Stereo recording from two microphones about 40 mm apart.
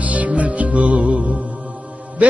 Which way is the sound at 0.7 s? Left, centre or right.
Right.